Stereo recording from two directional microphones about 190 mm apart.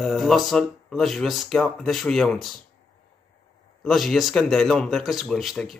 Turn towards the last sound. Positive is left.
turn(degrees=0)  # may be behind; listen again after turning